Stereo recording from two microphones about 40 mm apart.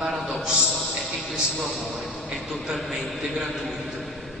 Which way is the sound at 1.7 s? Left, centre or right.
Centre.